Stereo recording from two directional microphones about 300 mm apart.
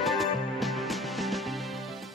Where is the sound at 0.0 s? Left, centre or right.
Centre.